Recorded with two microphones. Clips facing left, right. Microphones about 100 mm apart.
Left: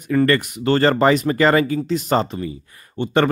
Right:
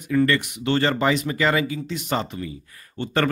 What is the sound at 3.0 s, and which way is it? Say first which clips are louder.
Speech: left 5 dB; 20° left (ahead or behind).